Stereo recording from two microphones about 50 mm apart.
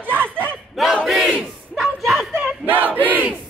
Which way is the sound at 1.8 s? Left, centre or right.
Centre.